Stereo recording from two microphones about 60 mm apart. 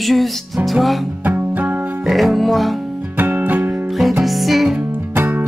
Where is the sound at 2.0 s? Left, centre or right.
Centre.